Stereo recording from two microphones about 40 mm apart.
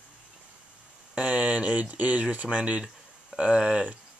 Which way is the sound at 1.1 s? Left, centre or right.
Right.